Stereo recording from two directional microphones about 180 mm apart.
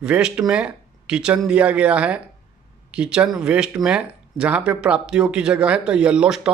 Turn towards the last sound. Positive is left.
turn(degrees=-5)  # may be behind; listen again after turning